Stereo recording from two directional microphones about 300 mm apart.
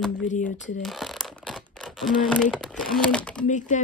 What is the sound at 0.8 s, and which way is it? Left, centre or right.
Crumpling, centre.